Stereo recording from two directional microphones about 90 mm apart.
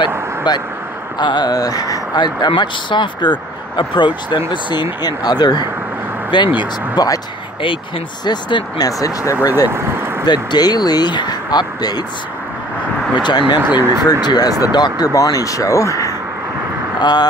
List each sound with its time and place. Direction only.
0.5 s speech: 55° left (ahead or behind)
8.3 s speech: 55° left (ahead or behind)
8.8 s speech: 40° left (ahead or behind)
9.7 s vehicle: 25° right (ahead or behind)
10.2 s speech: 50° left (ahead or behind)
13.1 s speech: 60° left (ahead or behind)
13.6 s speech: 25° right (ahead or behind)
14.2 s speech: 45° left (ahead or behind)
17.0 s speech: 50° left (ahead or behind)